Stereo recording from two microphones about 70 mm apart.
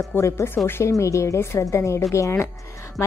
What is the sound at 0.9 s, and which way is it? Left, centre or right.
A woman's voice, left.